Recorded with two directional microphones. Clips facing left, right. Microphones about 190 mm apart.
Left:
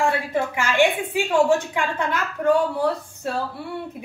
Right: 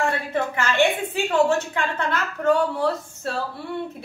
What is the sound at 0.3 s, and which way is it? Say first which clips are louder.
A woman's voice: left 1 dB; 10° left (ahead or behind).